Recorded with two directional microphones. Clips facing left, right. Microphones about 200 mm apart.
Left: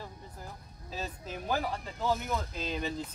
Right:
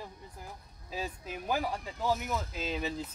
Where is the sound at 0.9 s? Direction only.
10° right (ahead or behind).